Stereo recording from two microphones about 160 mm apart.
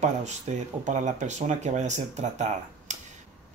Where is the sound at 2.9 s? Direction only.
45° right (ahead or behind).